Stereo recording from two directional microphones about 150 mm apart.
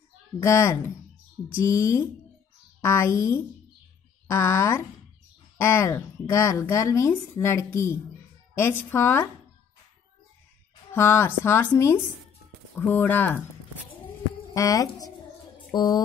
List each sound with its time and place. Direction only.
0.4 s a woman's voice: 20° left (ahead or behind)
10.9 s a woman's voice: 15° left (ahead or behind)
14.5 s speech: 25° left (ahead or behind)
15.7 s a sound: 30° left (ahead or behind)